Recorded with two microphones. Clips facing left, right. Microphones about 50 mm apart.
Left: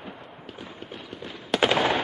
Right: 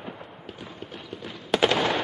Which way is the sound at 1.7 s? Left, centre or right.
Centre.